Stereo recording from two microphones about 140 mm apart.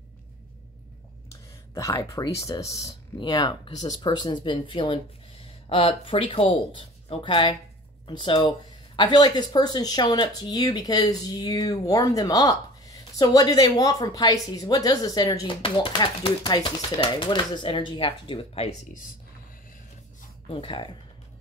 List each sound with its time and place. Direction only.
1.7 s speech: 20° left (ahead or behind)
15.6 s speech: 40° left (ahead or behind)
20.5 s speech: 35° left (ahead or behind)